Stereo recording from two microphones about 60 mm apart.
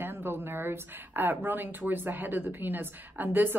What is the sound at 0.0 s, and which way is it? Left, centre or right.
A woman's voice, right.